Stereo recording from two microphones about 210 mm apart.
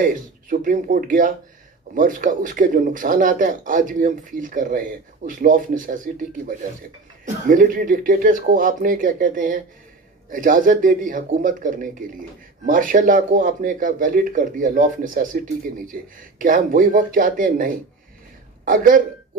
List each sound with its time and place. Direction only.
0.0 s speech: 40° right (ahead or behind)